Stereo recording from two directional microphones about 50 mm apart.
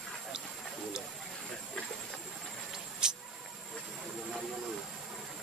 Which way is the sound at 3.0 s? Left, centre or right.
Centre.